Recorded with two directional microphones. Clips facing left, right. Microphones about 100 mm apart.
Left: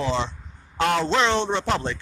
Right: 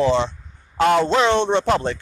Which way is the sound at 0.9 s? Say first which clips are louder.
Right 5 dB; 10° right (ahead or behind).